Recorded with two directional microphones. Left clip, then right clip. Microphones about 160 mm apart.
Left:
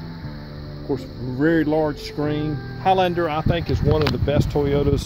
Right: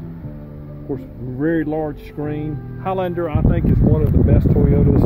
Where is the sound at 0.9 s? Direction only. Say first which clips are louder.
Left 1 dB; 20° left (ahead or behind).